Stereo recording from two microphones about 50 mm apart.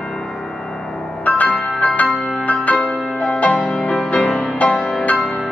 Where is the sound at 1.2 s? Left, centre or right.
Left.